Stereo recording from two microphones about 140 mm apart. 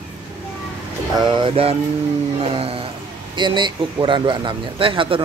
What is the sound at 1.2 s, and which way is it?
Speech, 35° right (ahead or behind).